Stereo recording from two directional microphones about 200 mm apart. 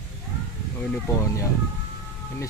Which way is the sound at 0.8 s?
15° left (ahead or behind).